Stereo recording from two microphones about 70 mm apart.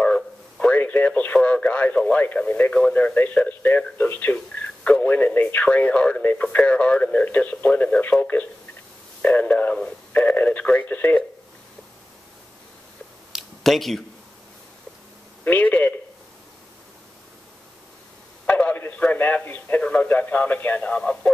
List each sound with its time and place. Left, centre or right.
0.0 s radio: centre
2.7 s speech: centre
13.3 s a sound: centre
15.4 s speech: left
18.5 s a sound: left
19.1 s speech: left